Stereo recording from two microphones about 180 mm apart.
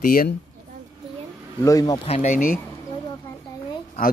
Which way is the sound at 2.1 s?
40° left (ahead or behind).